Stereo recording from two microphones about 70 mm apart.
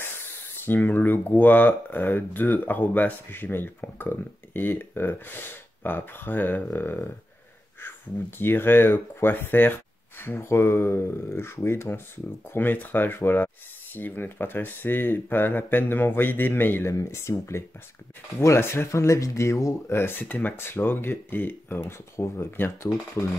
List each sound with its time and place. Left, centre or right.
0.7 s speech: left
16.9 s speech: left
20.0 s speech: left